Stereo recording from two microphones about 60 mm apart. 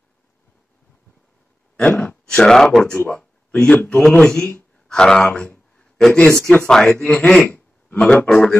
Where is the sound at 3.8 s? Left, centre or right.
Centre.